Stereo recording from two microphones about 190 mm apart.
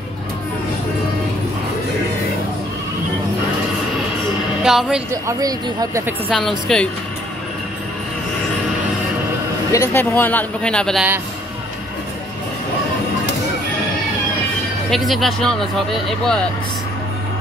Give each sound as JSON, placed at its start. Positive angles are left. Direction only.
{"t": 4.6, "sound": "speech", "side_deg": 0}
{"t": 5.1, "sound": "speech", "side_deg": -20}
{"t": 6.7, "sound": "speech", "side_deg": 5}
{"t": 9.7, "sound": "a man's voice", "side_deg": 15}
{"t": 14.9, "sound": "speech", "side_deg": 0}